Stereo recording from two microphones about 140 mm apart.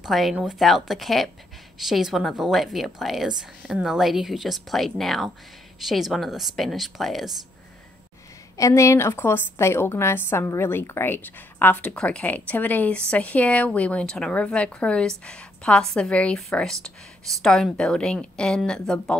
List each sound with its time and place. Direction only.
0.0 s a woman's voice: centre (ahead or behind)
8.5 s a woman's voice: 20° left (ahead or behind); by 19.1 s 5° left (ahead or behind)